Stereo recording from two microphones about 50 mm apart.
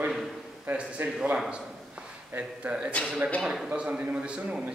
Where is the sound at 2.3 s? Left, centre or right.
Right.